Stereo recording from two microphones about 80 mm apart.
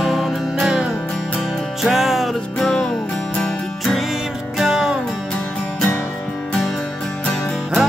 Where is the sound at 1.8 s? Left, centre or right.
Centre.